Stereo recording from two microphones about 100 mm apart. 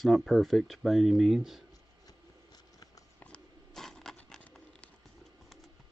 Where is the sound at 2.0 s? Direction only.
40° left (ahead or behind).